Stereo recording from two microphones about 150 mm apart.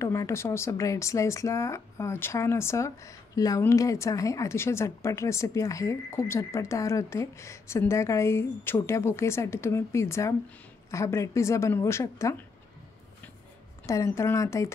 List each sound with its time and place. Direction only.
0.0 s speech: 20° left (ahead or behind)
13.8 s speech: 20° left (ahead or behind)